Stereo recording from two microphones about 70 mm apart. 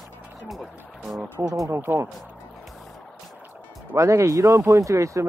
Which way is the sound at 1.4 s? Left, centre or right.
Right.